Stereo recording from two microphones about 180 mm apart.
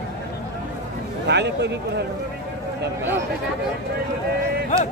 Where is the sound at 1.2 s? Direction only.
70° right (ahead or behind).